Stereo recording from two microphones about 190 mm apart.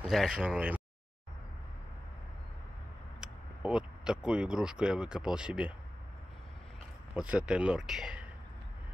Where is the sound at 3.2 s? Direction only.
5° right (ahead or behind).